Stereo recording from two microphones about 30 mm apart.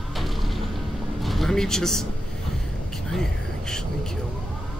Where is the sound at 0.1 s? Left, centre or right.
Centre.